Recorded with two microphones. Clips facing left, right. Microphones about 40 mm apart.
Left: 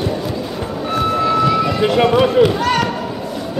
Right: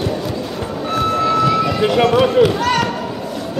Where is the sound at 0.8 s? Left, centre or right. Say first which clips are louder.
Even; centre.